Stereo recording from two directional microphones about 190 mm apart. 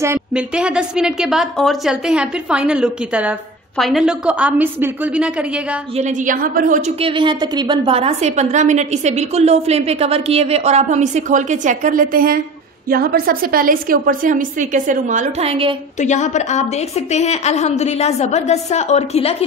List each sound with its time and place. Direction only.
0.0 s a woman's voice: 10° right (ahead or behind)
5.9 s a woman's voice: 40° right (ahead or behind)
7.0 s a woman's voice: 25° right (ahead or behind)
16.0 s a woman's voice: 40° left (ahead or behind)